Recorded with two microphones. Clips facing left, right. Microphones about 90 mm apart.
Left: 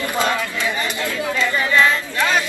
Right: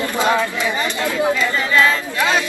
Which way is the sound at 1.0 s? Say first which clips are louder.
Right 5 dB; 20° right (ahead or behind).